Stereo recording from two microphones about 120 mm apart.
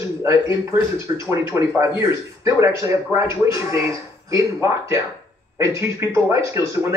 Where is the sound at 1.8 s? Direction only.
25° right (ahead or behind).